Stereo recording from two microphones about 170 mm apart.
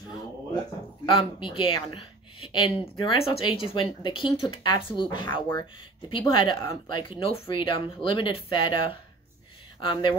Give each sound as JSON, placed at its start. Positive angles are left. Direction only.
{"t": 1.0, "sound": "speech", "side_deg": 30}
{"t": 9.8, "sound": "speech", "side_deg": 30}